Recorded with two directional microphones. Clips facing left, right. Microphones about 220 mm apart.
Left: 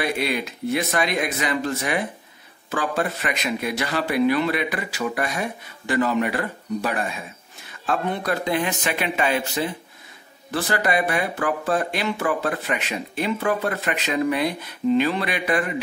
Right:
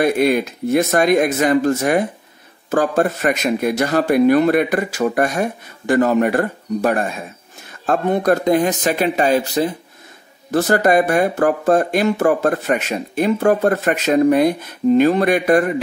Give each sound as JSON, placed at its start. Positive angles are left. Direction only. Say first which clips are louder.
{"t": 0.0, "sound": "speech", "louder": "right 9 dB", "side_deg": -45}